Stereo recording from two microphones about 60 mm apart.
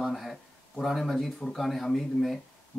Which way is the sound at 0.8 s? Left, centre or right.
Centre.